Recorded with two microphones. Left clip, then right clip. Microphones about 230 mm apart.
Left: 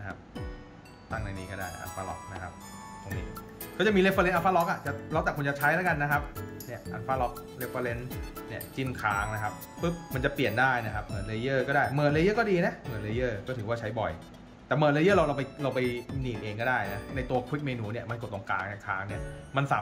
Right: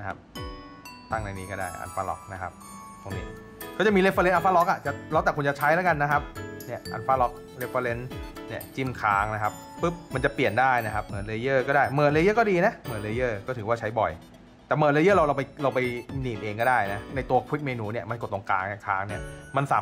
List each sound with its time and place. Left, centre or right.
1.1 s speech: centre
3.7 s speech: centre